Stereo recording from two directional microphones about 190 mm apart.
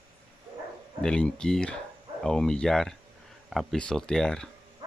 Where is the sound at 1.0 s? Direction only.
5° left (ahead or behind).